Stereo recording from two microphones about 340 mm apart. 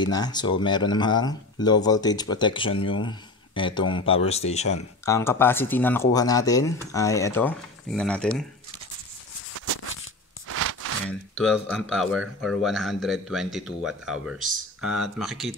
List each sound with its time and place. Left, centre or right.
0.0 s speech: centre
5.0 s speech: centre
10.5 s a sound: right
11.1 s speech: centre